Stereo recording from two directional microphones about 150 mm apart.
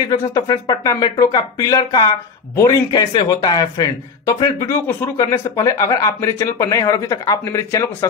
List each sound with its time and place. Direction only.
0.0 s speech: 25° left (ahead or behind)